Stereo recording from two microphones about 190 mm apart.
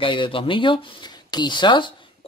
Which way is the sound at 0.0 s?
25° left (ahead or behind).